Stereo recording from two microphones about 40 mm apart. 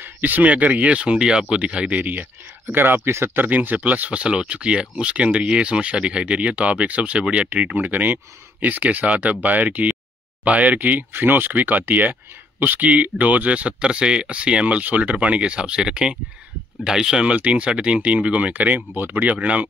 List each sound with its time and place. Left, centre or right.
0.0 s speech: right
2.6 s speech: right
3.3 s speech: right
4.2 s speech: right
11.5 s speech: right; by 17.3 s centre
17.3 s speech: right